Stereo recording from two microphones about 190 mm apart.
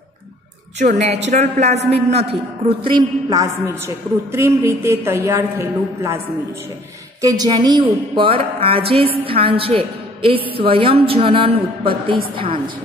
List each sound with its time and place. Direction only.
0.7 s a man's voice: 35° right (ahead or behind)
2.8 s a woman's voice: 25° right (ahead or behind)
7.2 s speech: 20° right (ahead or behind)